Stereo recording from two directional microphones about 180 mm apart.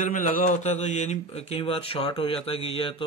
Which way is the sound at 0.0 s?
45° left (ahead or behind).